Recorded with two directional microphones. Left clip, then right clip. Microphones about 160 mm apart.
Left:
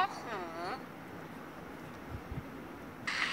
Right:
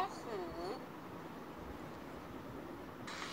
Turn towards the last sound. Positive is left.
turn(degrees=-15)  # may be behind; listen again after turning